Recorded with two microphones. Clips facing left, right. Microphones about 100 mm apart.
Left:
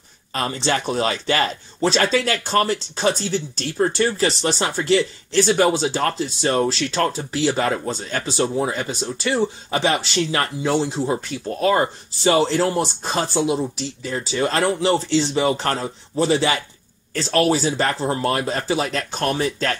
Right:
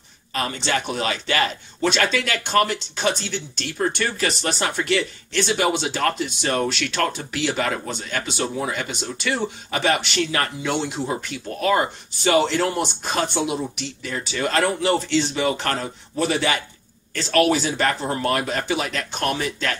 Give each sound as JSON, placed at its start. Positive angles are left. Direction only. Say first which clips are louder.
{"t": 0.3, "sound": "speech", "louder": "left 2 dB", "side_deg": 35}